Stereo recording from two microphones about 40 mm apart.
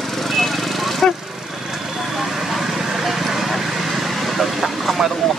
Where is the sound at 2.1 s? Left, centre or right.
Centre.